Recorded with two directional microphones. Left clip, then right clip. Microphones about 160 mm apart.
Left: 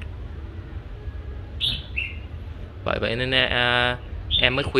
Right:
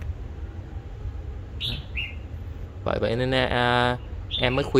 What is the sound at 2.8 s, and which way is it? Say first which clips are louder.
Speech: even; 30° right (ahead or behind).